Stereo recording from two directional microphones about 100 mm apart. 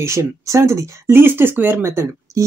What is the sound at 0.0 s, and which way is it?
Speech, 30° right (ahead or behind).